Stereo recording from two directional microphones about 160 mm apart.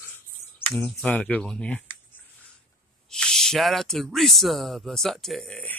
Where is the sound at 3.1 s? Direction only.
5° left (ahead or behind).